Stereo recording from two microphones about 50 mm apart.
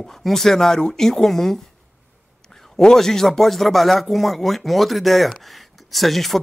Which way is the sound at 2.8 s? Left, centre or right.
Centre.